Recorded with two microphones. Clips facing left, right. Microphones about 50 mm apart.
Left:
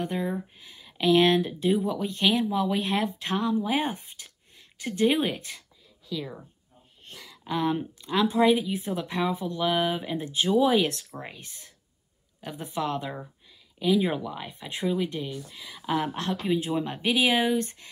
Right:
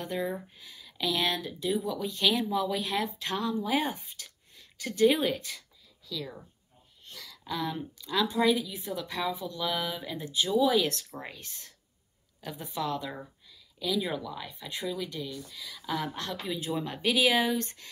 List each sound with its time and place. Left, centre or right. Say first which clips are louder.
0.0 s a woman's voice: left 3 dB; left